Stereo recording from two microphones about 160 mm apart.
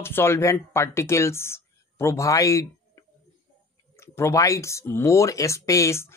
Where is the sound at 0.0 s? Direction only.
15° left (ahead or behind).